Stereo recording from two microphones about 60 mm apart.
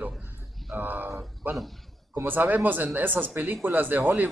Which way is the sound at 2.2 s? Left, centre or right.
Right.